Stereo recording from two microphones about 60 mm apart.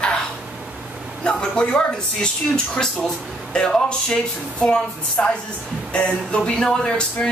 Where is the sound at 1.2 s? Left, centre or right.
Centre.